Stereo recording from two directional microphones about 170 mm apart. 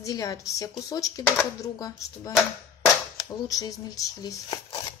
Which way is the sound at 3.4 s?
20° left (ahead or behind).